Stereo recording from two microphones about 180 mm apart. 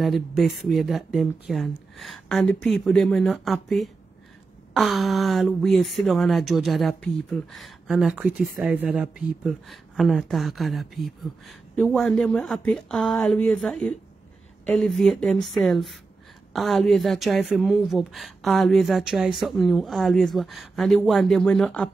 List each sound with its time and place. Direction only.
0.0 s speech: centre (ahead or behind)